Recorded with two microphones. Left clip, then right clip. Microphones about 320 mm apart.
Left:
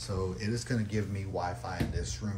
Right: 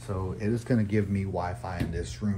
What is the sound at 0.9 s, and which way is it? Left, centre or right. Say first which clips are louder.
Speech: right 6 dB; right.